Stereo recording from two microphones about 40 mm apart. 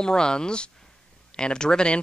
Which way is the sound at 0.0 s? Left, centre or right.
Centre.